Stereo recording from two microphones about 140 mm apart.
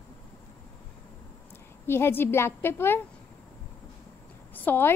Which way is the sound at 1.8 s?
15° left (ahead or behind).